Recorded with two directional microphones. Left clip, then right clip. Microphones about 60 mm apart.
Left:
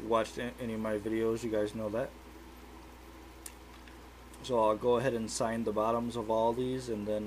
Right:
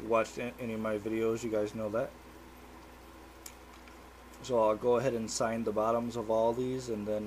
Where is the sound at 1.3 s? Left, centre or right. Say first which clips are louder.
Even; centre.